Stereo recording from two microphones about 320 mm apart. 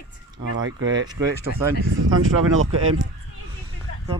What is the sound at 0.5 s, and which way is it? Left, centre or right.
Speech, right.